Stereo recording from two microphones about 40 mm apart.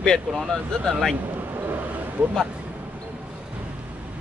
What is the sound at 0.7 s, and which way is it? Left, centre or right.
Speech, centre.